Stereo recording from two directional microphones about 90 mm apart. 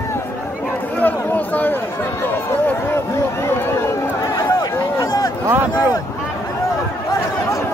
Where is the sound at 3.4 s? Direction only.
30° left (ahead or behind).